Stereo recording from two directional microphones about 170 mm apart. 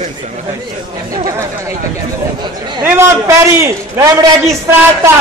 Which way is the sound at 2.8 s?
15° right (ahead or behind).